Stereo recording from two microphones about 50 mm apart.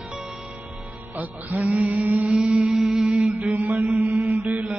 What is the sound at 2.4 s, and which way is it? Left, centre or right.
Music, right.